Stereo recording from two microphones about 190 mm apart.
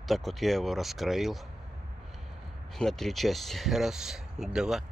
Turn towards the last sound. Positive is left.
turn(degrees=0)  # may be behind; listen again after turning